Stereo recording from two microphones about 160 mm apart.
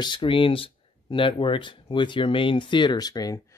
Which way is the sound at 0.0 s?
30° left (ahead or behind).